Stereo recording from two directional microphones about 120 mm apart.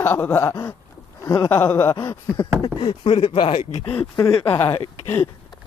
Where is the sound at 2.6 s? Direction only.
45° left (ahead or behind).